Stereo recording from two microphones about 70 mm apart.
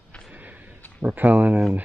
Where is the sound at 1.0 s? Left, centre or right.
Right.